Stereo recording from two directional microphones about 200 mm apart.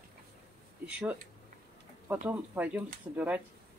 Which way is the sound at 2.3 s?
10° right (ahead or behind).